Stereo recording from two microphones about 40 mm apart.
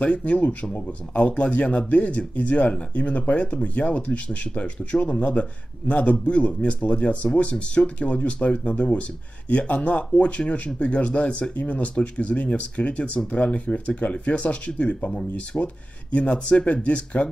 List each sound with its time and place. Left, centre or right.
0.0 s speech: left